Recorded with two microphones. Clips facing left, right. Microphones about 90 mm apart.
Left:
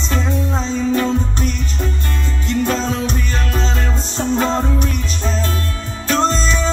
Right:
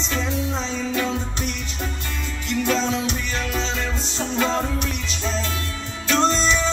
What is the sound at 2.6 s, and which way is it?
Music, 40° left (ahead or behind).